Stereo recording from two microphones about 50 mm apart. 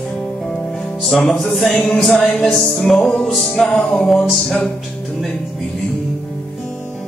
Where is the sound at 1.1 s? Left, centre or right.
Centre.